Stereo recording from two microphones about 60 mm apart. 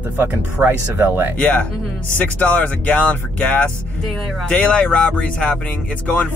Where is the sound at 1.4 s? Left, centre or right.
Left.